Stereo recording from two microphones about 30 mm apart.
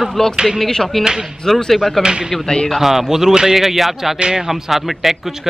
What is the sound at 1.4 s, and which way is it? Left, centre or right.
Speech, centre.